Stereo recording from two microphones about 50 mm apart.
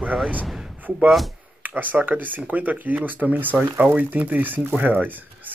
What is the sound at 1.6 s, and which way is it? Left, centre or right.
Speech, right.